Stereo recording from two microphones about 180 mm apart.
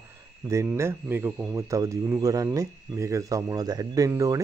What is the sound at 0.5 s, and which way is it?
A man's voice, 15° right (ahead or behind).